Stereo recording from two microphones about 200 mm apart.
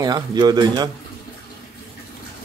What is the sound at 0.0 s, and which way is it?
Speech, 20° right (ahead or behind).